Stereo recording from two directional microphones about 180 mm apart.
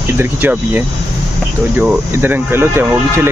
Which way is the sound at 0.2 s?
10° right (ahead or behind).